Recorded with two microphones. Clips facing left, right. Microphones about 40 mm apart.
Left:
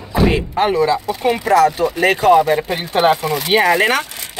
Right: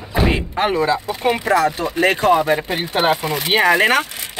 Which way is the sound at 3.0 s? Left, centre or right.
Centre.